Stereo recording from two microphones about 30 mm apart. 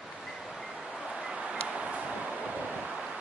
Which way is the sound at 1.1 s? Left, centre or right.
Right.